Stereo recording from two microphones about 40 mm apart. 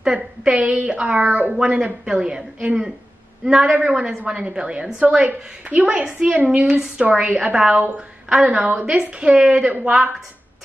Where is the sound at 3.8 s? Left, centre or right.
Right.